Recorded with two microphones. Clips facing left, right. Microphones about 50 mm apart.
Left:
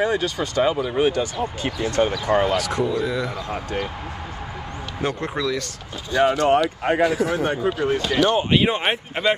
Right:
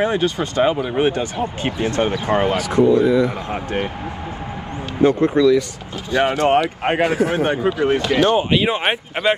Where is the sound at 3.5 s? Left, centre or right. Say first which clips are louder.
Right 4 dB; right.